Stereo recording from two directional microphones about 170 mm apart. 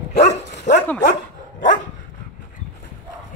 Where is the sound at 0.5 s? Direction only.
90° left.